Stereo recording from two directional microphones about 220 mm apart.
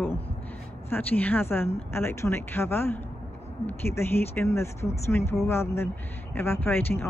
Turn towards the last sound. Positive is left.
turn(degrees=10)  # may be behind; listen again after turning